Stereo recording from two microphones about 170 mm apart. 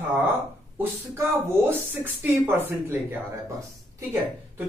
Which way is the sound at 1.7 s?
10° right (ahead or behind).